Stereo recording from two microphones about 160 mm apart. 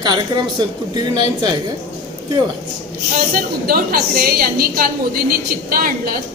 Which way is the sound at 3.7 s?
65° right (ahead or behind).